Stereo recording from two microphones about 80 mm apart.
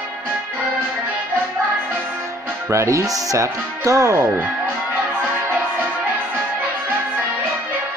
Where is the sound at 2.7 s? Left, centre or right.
Right.